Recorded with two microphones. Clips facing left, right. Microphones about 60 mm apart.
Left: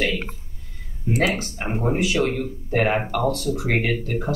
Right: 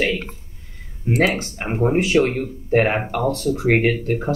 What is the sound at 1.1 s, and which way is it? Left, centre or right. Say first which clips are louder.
Speech: right 3 dB; right.